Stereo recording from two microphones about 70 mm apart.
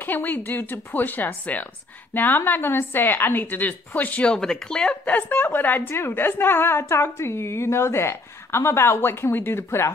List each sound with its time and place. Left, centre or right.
0.0 s a woman's voice: left
4.3 s speech: centre
5.3 s a woman's voice: left